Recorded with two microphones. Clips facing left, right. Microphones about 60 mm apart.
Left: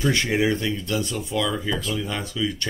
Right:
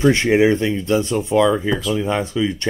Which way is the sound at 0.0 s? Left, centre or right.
Right.